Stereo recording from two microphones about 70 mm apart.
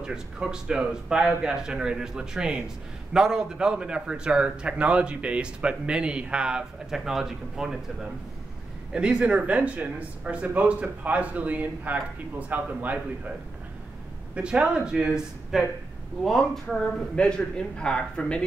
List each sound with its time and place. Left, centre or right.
0.0 s a man's voice: centre
8.9 s speech: centre
14.3 s a man's voice: centre
16.3 s speech: centre
17.1 s speech: centre